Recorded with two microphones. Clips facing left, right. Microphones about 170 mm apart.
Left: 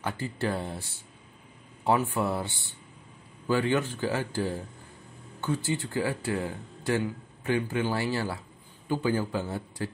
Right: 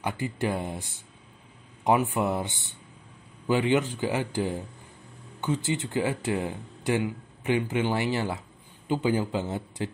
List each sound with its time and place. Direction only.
0.0 s speech: 15° right (ahead or behind)
1.9 s speech: 15° right (ahead or behind)